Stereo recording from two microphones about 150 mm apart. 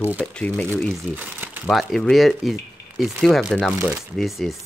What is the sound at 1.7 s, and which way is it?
Speech, centre (ahead or behind).